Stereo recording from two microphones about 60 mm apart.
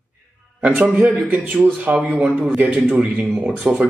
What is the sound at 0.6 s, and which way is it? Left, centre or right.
A man's voice, right.